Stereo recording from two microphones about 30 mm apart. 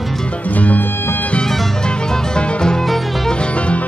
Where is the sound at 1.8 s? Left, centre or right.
Left.